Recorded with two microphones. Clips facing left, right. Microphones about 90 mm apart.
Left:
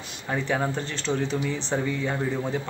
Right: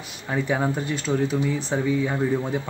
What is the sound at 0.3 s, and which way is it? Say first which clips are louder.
Speech: right 2 dB; 10° right (ahead or behind).